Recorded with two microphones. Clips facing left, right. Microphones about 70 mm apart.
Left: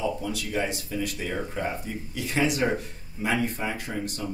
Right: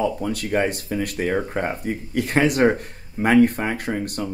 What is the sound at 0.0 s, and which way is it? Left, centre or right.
Speech, right.